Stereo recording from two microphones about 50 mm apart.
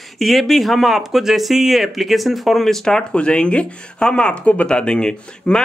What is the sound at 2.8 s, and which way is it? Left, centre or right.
Speech, centre.